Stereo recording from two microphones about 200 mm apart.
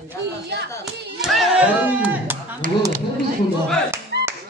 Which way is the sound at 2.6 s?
40° right (ahead or behind).